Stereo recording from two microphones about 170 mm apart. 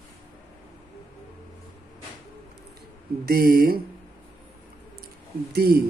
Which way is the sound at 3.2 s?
60° right (ahead or behind).